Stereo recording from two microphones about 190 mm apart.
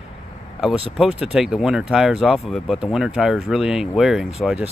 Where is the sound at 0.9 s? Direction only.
5° right (ahead or behind).